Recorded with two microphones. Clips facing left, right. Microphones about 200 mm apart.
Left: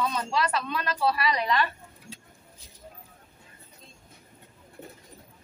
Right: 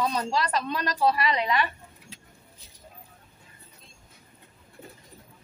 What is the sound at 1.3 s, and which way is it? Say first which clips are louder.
Speech: even; 15° right (ahead or behind).